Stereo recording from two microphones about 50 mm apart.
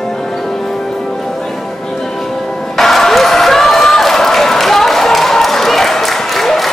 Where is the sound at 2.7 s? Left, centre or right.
Centre.